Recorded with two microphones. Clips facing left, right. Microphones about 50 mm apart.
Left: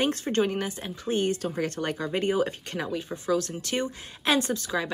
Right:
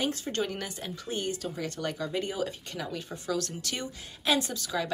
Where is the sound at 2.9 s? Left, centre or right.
Left.